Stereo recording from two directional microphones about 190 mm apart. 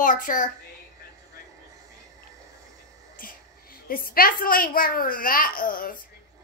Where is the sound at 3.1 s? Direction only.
50° left (ahead or behind).